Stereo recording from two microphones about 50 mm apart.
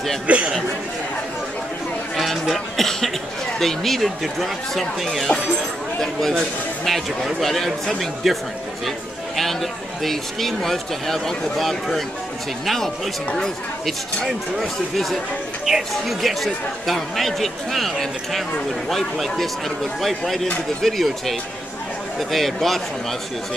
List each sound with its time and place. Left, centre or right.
0.3 s speech: right
2.1 s speech: centre
6.8 s speech: centre
9.4 s speech: centre
15.6 s speech: centre